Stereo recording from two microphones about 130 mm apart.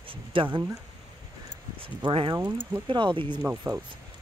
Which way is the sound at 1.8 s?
40° right (ahead or behind).